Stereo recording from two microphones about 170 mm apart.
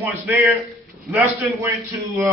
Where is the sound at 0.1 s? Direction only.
10° right (ahead or behind).